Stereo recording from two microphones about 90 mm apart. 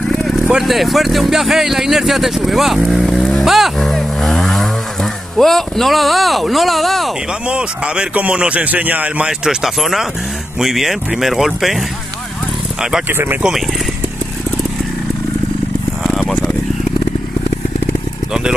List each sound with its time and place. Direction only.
0.5 s speech: 5° right (ahead or behind)
2.9 s vehicle: centre (ahead or behind)
7.4 s speech: 10° right (ahead or behind)
13.1 s speech: 25° right (ahead or behind)
13.4 s speech: 5° right (ahead or behind)
16.0 s a sound: 5° left (ahead or behind)